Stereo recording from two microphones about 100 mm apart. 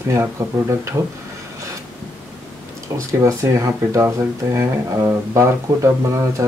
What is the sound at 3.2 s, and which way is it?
Speech, 30° right (ahead or behind).